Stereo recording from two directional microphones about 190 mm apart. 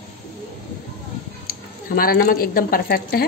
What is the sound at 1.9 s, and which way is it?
Speech, 50° left (ahead or behind).